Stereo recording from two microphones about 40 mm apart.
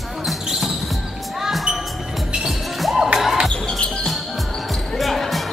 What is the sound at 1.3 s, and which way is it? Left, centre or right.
Music, centre.